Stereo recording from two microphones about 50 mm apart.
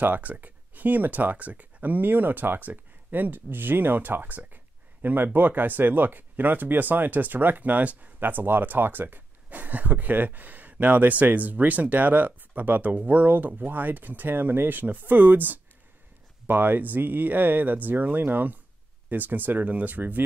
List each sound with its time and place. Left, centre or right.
0.0 s speech: right